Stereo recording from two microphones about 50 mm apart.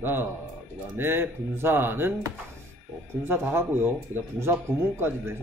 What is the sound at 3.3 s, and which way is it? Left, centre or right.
Speech, right.